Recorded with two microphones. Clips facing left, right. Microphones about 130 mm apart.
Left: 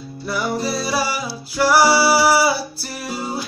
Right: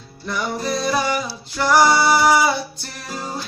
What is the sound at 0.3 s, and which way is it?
Music, 5° left (ahead or behind).